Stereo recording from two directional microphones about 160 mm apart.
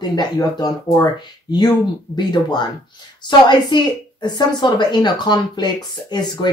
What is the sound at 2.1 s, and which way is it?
A woman's voice, 30° left (ahead or behind).